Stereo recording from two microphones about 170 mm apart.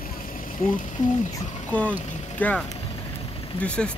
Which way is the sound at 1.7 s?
10° left (ahead or behind).